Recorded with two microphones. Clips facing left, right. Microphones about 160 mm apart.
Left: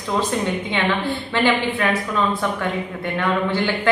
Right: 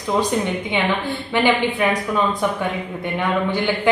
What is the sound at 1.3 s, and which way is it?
Speech, 15° right (ahead or behind).